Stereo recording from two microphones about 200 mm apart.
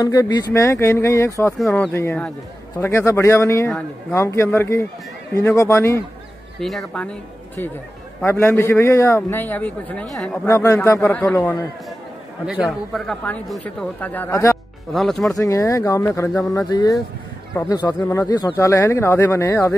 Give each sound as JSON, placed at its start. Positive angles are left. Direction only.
{"t": 0.0, "sound": "speech", "side_deg": 20}
{"t": 1.6, "sound": "speech", "side_deg": 0}
{"t": 6.6, "sound": "speech", "side_deg": 0}
{"t": 8.2, "sound": "speech", "side_deg": 10}
{"t": 12.4, "sound": "speech", "side_deg": -5}
{"t": 14.9, "sound": "speech", "side_deg": 0}
{"t": 15.3, "sound": "speech", "side_deg": 15}